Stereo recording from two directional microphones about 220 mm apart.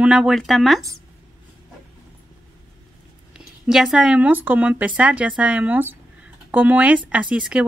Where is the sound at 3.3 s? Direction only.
5° right (ahead or behind).